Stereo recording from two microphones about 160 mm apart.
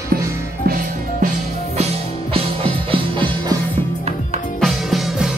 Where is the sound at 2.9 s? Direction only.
30° right (ahead or behind).